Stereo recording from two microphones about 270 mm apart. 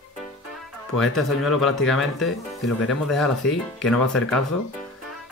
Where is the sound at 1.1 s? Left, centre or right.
Centre.